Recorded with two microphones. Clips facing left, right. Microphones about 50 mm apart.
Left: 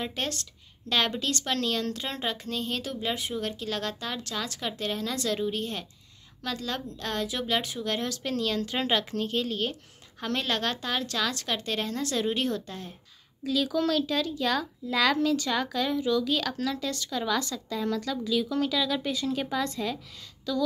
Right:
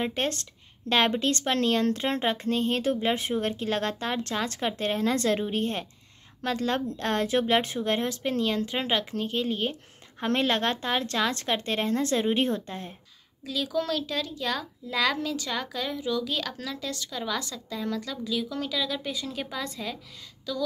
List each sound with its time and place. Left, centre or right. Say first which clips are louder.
0.0 s a woman's voice: right 4 dB; right
10.2 s speech: right 4 dB; right
13.4 s a child's voice: left 2 dB; centre